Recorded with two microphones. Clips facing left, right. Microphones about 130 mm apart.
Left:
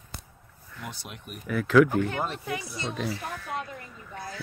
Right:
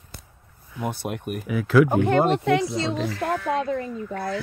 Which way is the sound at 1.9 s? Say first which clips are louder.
Right 9 dB; 65° right (ahead or behind).